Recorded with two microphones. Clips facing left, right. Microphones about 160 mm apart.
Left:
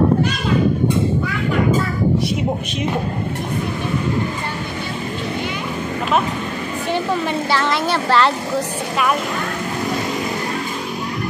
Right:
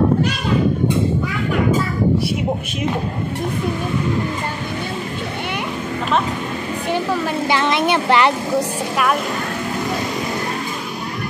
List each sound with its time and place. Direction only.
7.4 s speech: 15° right (ahead or behind)